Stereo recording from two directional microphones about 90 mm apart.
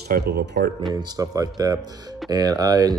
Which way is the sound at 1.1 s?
40° right (ahead or behind).